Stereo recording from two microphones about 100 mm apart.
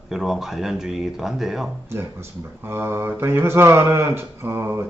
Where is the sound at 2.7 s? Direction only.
25° right (ahead or behind).